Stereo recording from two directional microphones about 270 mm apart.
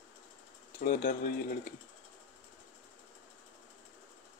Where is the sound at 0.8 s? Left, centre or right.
Left.